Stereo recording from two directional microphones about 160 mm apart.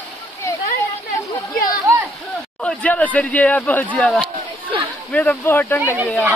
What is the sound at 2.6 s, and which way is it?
Speech, 5° left (ahead or behind).